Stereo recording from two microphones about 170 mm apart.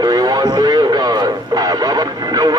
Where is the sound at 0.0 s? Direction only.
25° right (ahead or behind).